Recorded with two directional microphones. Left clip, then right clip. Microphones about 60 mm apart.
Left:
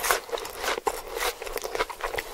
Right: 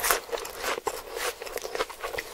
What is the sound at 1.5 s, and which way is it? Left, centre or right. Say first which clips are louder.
Horse: left 1 dB; centre.